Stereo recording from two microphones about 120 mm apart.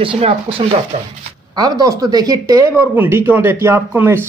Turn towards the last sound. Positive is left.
turn(degrees=-15)  # may be behind; listen again after turning